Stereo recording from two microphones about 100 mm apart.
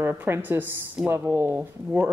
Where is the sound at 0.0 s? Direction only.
20° right (ahead or behind).